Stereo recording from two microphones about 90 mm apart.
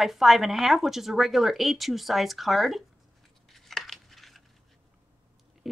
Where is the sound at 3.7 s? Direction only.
5° left (ahead or behind).